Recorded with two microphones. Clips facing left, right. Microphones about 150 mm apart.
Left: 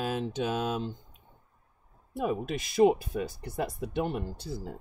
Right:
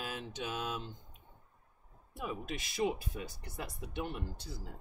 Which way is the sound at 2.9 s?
55° left (ahead or behind).